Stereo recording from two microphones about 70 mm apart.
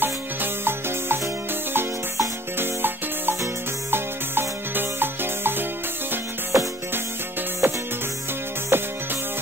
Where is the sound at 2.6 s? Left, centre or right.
Right.